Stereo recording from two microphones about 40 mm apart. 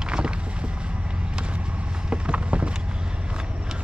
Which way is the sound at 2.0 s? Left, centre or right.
Right.